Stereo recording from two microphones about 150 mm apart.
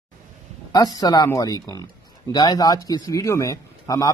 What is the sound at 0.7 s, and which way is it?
A man's voice, 25° left (ahead or behind).